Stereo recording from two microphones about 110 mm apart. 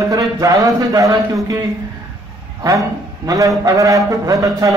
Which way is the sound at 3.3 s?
30° right (ahead or behind).